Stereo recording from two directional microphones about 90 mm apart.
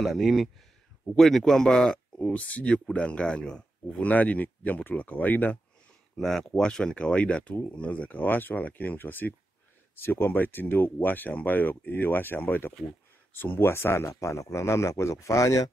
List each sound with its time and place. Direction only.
0.0 s speech: centre (ahead or behind); by 5.6 s 20° left (ahead or behind)
6.1 s a man's voice: 5° left (ahead or behind); by 15.7 s 40° left (ahead or behind)